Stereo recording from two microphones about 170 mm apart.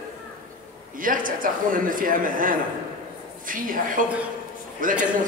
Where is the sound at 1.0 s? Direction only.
55° right (ahead or behind).